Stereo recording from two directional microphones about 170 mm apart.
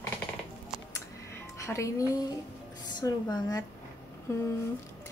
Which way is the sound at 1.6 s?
15° left (ahead or behind).